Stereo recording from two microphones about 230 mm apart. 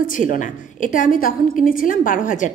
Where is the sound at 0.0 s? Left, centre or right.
Left.